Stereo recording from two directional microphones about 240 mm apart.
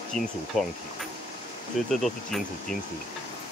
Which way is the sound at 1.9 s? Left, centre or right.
Centre.